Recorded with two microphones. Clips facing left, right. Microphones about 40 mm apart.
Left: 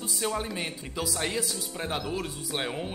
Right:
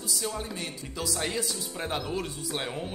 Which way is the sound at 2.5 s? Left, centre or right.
Centre.